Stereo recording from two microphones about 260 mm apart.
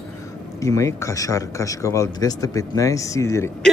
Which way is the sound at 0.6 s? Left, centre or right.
Centre.